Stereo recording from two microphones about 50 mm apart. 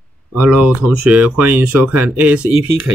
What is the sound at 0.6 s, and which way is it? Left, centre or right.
Speech, right.